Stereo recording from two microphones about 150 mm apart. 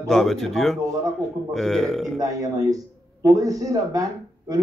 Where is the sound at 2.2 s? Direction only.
25° right (ahead or behind).